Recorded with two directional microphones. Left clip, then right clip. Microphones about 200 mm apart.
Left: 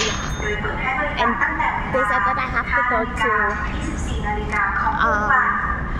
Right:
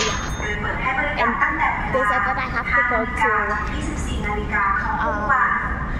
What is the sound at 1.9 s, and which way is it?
A woman's voice, 5° left (ahead or behind).